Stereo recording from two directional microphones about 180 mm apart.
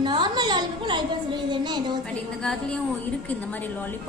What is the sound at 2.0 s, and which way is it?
A woman's voice, 5° left (ahead or behind).